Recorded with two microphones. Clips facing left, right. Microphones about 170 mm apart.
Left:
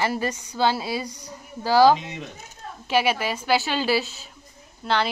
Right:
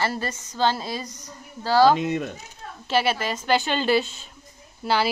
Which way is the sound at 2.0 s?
50° right (ahead or behind).